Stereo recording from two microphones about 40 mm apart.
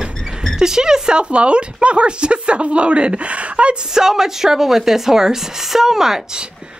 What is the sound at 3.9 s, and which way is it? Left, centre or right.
Speech, centre.